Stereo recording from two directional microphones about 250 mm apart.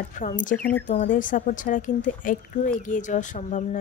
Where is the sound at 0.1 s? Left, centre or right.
Left.